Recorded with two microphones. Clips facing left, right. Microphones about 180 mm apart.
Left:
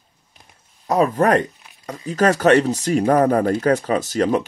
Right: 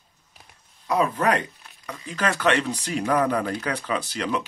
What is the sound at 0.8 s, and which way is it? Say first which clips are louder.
Speech: left 5 dB; 45° left (ahead or behind).